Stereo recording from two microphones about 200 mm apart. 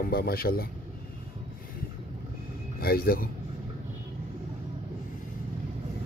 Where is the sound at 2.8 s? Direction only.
50° left (ahead or behind).